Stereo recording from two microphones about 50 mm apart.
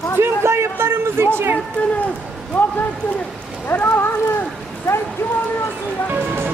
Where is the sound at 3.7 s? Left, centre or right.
Left.